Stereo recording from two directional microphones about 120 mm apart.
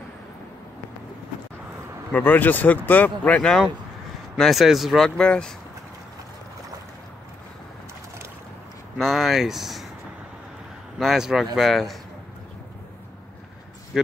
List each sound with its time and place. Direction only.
2.1 s speech: 15° left (ahead or behind)
8.9 s speech: centre (ahead or behind)
11.0 s speech: 5° right (ahead or behind)
13.9 s speech: 5° right (ahead or behind)